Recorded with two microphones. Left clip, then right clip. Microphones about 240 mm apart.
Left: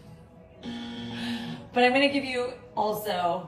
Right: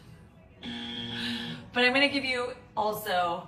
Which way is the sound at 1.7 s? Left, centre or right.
Centre.